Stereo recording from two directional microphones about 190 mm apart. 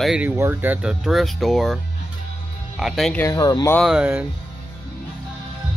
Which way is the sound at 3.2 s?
15° left (ahead or behind).